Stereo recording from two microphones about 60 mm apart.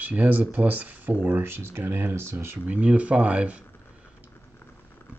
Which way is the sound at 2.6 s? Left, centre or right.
Right.